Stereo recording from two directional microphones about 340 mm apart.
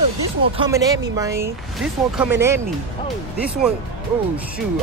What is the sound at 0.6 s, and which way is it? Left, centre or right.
Speech, centre.